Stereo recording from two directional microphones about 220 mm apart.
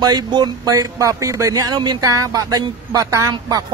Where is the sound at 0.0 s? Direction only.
20° right (ahead or behind).